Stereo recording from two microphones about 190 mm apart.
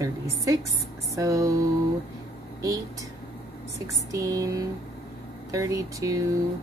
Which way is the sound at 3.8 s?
20° right (ahead or behind).